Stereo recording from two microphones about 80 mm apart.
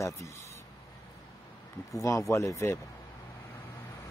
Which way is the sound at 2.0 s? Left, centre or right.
Left.